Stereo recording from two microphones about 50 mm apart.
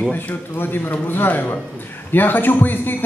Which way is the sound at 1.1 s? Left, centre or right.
Left.